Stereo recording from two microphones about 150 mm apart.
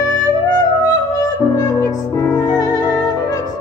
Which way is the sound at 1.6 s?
25° left (ahead or behind).